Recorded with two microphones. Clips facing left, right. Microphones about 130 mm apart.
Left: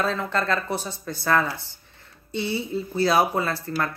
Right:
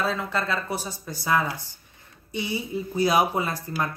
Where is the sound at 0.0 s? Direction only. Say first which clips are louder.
Left 2 dB; 10° right (ahead or behind).